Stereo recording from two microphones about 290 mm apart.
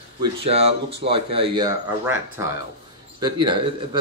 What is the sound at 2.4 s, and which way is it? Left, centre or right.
Speech, centre.